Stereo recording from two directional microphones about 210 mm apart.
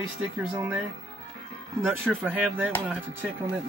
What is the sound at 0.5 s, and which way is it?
Speech, 10° right (ahead or behind).